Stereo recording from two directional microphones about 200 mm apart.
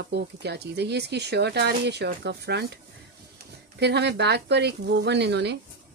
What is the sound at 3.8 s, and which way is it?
Speech, 55° right (ahead or behind).